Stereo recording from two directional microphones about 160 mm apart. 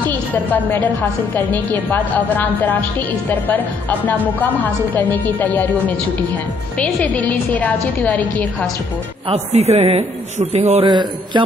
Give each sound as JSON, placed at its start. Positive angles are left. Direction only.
{"t": 0.0, "sound": "a woman's voice", "side_deg": 10}
{"t": 9.3, "sound": "a man's voice", "side_deg": -40}